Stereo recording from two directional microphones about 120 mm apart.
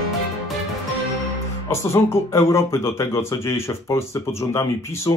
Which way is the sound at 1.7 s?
20° left (ahead or behind).